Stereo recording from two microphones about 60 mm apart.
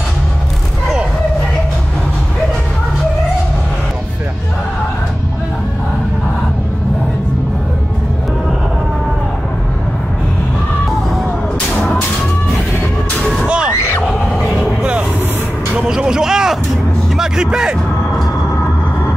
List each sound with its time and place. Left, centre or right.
14.0 s a sound: centre
14.8 s vehicle: centre
17.2 s music: centre